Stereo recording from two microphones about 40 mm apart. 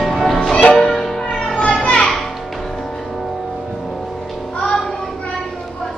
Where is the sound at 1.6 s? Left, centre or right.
Left.